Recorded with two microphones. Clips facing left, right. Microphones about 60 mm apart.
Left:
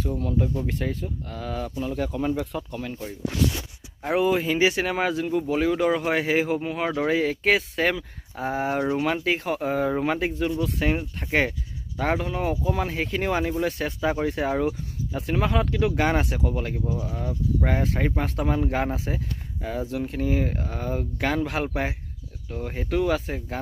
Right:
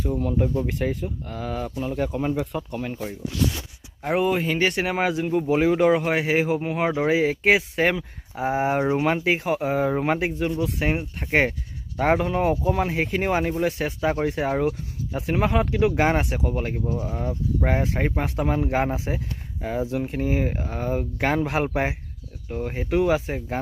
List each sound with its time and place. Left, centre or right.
0.0 s speech: centre
4.0 s speech: centre
4.8 s speech: centre
5.3 s speech: right
6.0 s speech: centre
6.6 s speech: right
9.4 s speech: centre
12.2 s speech: right
12.7 s speech: right
15.1 s speech: right
16.0 s speech: centre
16.4 s speech: right
17.6 s speech: centre